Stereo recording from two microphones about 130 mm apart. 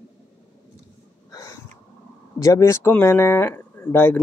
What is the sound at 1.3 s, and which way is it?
Snort, 25° left (ahead or behind).